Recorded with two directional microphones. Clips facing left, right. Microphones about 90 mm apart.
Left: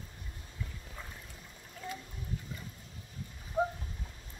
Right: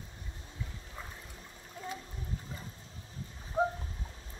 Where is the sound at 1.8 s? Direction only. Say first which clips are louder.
Right 1 dB; 20° right (ahead or behind).